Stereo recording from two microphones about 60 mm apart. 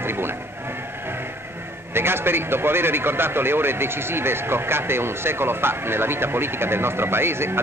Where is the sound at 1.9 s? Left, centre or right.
Right.